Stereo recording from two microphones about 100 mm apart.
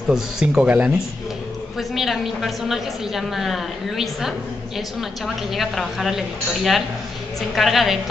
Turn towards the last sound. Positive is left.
turn(degrees=0)  # may be behind; listen again after turning